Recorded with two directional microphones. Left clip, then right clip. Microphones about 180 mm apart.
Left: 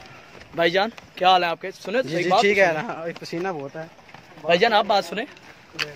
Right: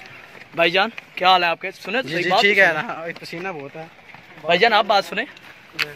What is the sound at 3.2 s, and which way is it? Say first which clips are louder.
Speech: left 1 dB; 55° left (ahead or behind).